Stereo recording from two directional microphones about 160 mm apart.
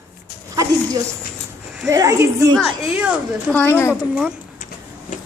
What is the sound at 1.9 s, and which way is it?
Speech, 20° right (ahead or behind).